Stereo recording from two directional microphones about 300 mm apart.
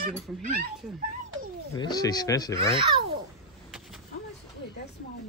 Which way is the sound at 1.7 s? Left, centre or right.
Centre.